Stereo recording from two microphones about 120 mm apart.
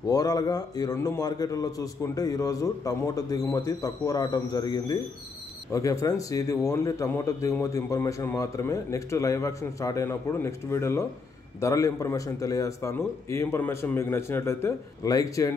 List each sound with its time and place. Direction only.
0.0 s a man's voice: 30° left (ahead or behind)